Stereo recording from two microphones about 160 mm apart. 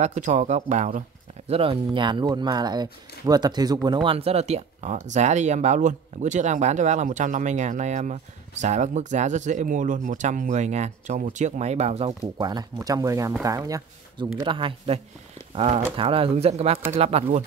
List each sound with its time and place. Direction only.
0.0 s speech: 45° right (ahead or behind)
1.5 s speech: 35° right (ahead or behind)
12.1 s speech: 25° right (ahead or behind)